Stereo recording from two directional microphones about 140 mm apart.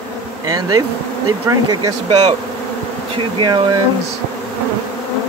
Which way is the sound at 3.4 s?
35° right (ahead or behind).